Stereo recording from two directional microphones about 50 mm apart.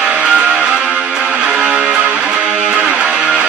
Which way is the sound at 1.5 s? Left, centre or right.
Centre.